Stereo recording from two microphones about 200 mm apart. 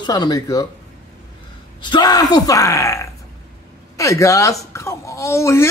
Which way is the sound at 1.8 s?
20° left (ahead or behind).